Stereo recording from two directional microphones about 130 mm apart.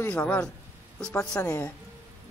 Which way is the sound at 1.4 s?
20° left (ahead or behind).